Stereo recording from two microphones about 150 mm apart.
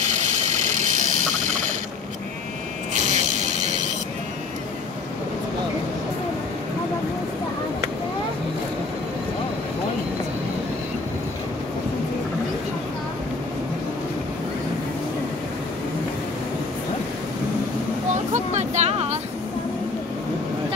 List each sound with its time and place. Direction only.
0.0 s vehicle: 50° right (ahead or behind)
2.9 s music: 50° right (ahead or behind)
18.3 s a sound: 50° right (ahead or behind)